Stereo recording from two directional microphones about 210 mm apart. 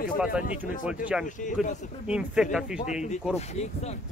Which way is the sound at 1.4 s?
35° left (ahead or behind).